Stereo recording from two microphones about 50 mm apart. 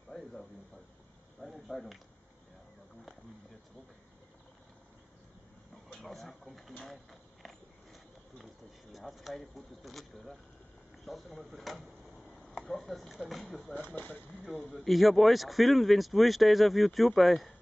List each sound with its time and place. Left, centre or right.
0.1 s a sound: centre
1.7 s speech: centre
5.9 s speech: centre
6.8 s a sound: centre
8.9 s speech: centre
12.4 s a sound: centre
13.1 s speech: centre
13.7 s speech: left
14.9 s speech: centre